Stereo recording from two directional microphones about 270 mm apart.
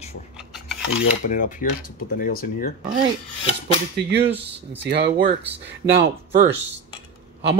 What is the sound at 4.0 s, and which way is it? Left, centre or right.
Speech, right.